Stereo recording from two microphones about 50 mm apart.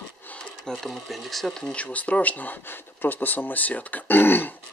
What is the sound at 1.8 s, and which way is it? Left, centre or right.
Speech, left.